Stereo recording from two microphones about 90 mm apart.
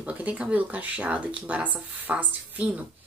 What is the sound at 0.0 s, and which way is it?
A woman's voice, 15° right (ahead or behind).